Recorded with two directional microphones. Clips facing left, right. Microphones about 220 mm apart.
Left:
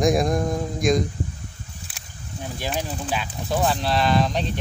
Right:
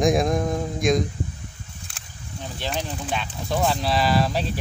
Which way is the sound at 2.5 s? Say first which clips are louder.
Left 1 dB; 10° left (ahead or behind).